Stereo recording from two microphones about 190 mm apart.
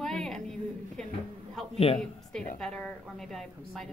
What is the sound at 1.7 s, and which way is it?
Speech, 30° left (ahead or behind).